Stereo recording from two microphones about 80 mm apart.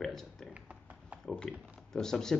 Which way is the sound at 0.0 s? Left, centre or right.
Centre.